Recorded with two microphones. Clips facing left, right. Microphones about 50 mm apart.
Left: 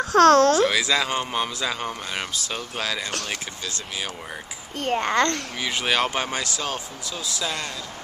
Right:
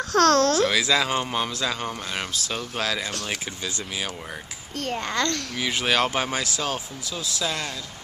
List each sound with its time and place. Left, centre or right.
0.0 s speech: left
0.5 s speech: centre
3.3 s speech: centre
4.7 s a child's voice: left
5.6 s speech: centre